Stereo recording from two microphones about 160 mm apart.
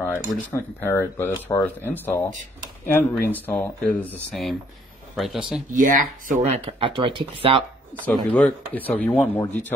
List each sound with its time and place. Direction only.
0.0 s speech: 15° left (ahead or behind); by 5.6 s centre (ahead or behind)
5.7 s speech: 55° right (ahead or behind)
6.8 s speech: 30° right (ahead or behind)
8.1 s speech: 10° left (ahead or behind)